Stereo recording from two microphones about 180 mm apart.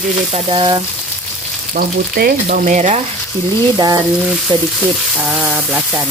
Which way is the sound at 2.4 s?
45° right (ahead or behind).